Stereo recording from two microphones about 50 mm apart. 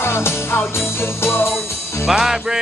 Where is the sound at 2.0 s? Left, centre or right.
Centre.